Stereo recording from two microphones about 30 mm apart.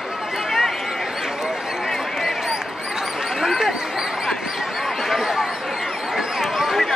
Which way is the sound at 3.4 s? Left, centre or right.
Centre.